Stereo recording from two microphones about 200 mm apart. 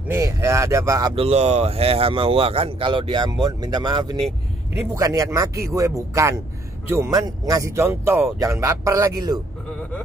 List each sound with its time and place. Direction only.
0.1 s speech: 15° right (ahead or behind)
1.1 s speech: 30° right (ahead or behind)